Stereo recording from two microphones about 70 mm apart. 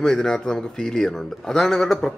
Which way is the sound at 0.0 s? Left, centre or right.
Centre.